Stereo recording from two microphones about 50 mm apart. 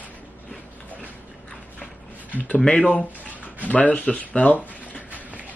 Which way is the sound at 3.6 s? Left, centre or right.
Left.